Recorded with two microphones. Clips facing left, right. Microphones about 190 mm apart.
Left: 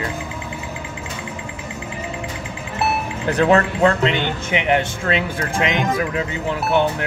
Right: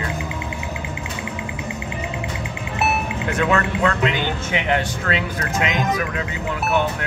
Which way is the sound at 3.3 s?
35° left (ahead or behind).